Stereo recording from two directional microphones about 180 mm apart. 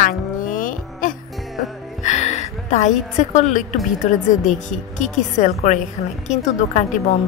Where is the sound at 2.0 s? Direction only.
40° left (ahead or behind).